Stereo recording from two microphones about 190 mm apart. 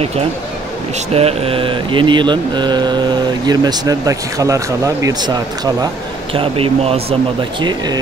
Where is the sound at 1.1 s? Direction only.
30° right (ahead or behind).